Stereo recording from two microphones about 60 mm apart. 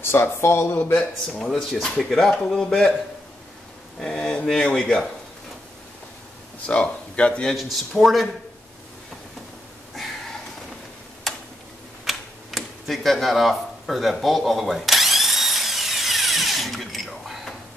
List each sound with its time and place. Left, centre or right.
0.0 s speech: left
1.4 s speech: centre
4.0 s speech: centre
6.6 s speech: centre
7.4 s speech: centre
11.3 s tick-tock: centre
12.0 s typewriter: centre